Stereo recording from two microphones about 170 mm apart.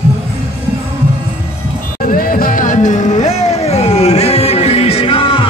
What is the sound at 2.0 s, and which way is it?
Music, 55° left (ahead or behind).